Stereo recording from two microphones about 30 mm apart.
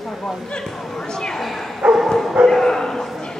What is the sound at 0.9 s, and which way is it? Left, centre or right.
Speech, left.